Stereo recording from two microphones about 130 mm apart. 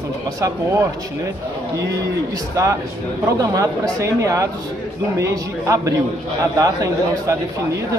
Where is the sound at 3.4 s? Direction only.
25° right (ahead or behind).